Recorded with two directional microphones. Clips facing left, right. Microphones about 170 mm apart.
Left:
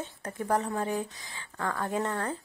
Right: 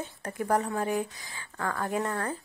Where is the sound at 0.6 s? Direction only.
5° right (ahead or behind).